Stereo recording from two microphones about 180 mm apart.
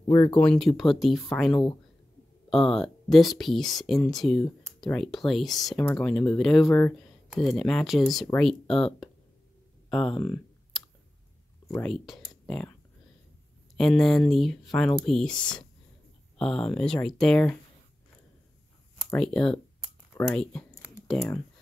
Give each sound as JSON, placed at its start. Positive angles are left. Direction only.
{"t": 0.0, "sound": "speech", "side_deg": 20}
{"t": 0.4, "sound": "speech", "side_deg": 5}
{"t": 7.3, "sound": "speech", "side_deg": 0}
{"t": 11.7, "sound": "speech", "side_deg": 5}
{"t": 13.7, "sound": "speech", "side_deg": 0}
{"t": 19.1, "sound": "speech", "side_deg": 5}